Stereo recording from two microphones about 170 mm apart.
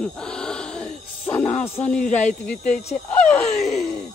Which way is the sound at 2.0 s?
45° left (ahead or behind).